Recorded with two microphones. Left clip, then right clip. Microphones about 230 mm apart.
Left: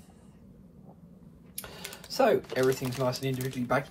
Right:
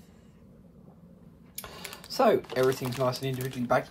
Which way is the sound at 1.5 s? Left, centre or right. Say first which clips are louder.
Right 1 dB; right.